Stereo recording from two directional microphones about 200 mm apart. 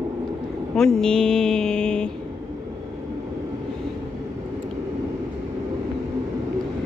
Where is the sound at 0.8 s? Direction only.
5° left (ahead or behind).